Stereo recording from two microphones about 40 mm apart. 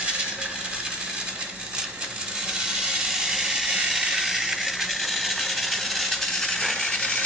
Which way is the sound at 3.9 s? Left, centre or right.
Centre.